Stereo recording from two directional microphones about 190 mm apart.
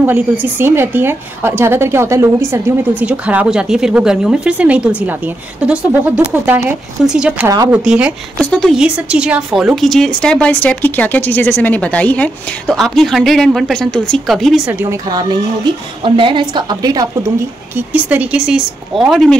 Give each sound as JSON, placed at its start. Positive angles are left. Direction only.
{"t": 0.0, "sound": "a woman's voice", "side_deg": -10}
{"t": 17.7, "sound": "a woman's voice", "side_deg": -10}